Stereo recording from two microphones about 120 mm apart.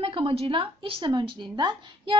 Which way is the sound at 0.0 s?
50° right (ahead or behind).